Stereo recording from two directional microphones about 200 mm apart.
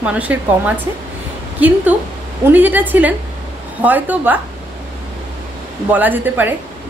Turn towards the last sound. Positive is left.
turn(degrees=-10)  # may be behind; listen again after turning